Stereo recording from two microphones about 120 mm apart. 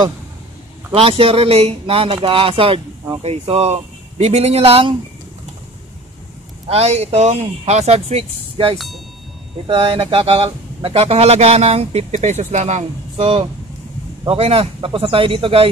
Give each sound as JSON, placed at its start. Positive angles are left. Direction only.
{"t": 0.9, "sound": "speech", "side_deg": -55}
{"t": 6.7, "sound": "speech", "side_deg": -60}
{"t": 8.7, "sound": "speech", "side_deg": 0}
{"t": 9.7, "sound": "speech", "side_deg": -55}
{"t": 13.2, "sound": "speech", "side_deg": -45}